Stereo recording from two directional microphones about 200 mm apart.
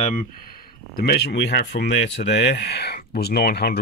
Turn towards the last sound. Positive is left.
turn(degrees=50)  # may be behind; listen again after turning